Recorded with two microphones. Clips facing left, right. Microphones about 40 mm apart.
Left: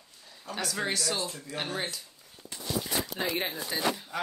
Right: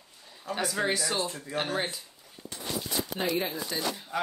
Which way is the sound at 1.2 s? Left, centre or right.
Right.